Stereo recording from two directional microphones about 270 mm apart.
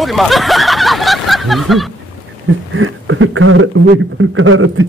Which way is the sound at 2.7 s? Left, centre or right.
Right.